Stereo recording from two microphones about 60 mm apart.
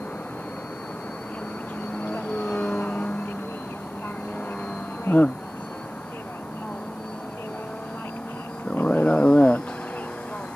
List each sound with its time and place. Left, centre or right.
2.0 s vehicle: left
5.0 s insect: left
8.8 s a sound: left